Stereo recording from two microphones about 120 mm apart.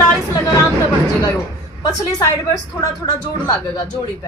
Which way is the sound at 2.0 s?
35° left (ahead or behind).